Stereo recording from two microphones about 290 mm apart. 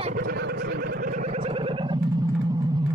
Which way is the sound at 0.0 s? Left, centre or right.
Right.